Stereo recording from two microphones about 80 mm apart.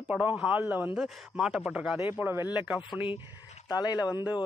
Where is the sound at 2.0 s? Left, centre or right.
Right.